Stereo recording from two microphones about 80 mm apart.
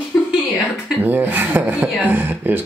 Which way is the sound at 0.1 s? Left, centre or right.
Left.